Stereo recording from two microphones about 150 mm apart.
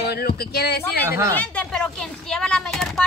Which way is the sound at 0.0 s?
90° left.